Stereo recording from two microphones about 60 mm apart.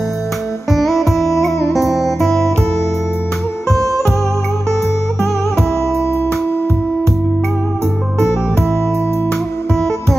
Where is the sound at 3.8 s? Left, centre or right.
Right.